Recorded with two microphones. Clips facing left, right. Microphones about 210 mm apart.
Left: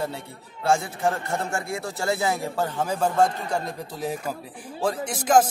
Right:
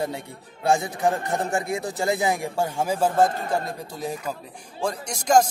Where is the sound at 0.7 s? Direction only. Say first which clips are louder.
Right 1 dB; 15° right (ahead or behind).